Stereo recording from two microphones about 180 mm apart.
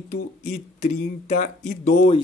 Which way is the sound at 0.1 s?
40° left (ahead or behind).